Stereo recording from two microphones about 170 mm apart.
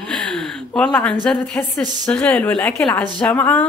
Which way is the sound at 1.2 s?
5° left (ahead or behind).